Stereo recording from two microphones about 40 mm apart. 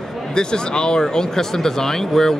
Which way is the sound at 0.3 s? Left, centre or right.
Centre.